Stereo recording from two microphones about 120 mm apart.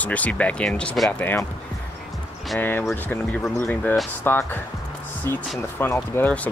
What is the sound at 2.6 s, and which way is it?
Speech, 15° left (ahead or behind).